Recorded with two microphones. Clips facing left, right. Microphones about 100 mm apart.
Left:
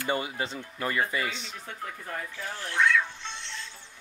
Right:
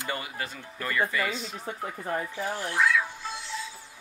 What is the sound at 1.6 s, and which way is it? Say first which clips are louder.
Speech: right 4 dB; 25° right (ahead or behind).